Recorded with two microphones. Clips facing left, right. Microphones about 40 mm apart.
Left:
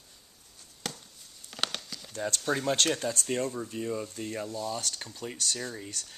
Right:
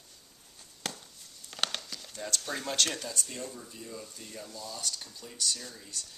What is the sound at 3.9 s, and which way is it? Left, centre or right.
Speech, left.